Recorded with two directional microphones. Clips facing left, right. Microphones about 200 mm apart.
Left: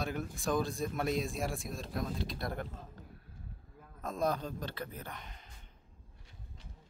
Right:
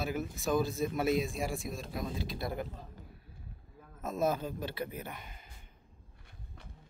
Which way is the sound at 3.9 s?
5° right (ahead or behind).